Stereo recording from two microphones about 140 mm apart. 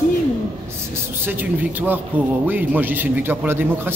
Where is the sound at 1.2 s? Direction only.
10° right (ahead or behind).